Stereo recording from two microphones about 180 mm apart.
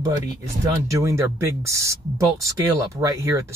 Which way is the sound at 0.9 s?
15° right (ahead or behind).